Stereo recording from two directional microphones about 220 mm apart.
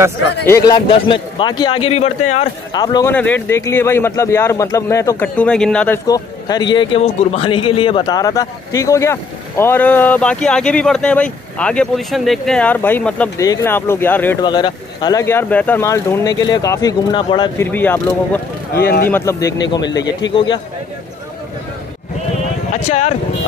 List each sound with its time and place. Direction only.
0.5 s a man's voice: 15° left (ahead or behind)
3.1 s speech: 10° left (ahead or behind)
6.0 s speech: 15° left (ahead or behind)
14.4 s speech: 20° left (ahead or behind)
17.6 s speech: 10° left (ahead or behind)
18.7 s speech: 45° left (ahead or behind)
19.0 s a man's voice: 10° left (ahead or behind)
22.8 s a man's voice: 30° left (ahead or behind)